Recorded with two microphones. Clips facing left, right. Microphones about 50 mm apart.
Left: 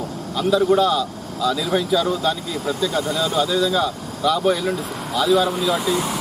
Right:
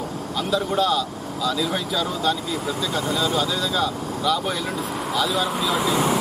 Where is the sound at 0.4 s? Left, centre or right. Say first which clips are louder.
Left 6 dB; centre.